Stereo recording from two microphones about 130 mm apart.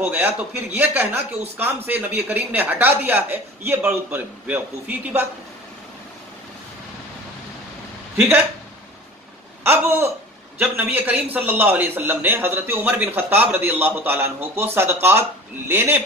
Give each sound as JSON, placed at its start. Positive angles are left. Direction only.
{"t": 0.0, "sound": "a man's voice", "side_deg": -15}
{"t": 9.7, "sound": "a man's voice", "side_deg": -20}